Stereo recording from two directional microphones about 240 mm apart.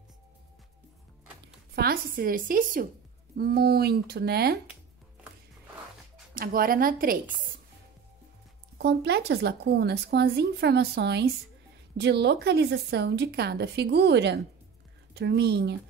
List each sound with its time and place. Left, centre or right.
1.8 s speech: right
6.3 s speech: right
8.7 s speech: right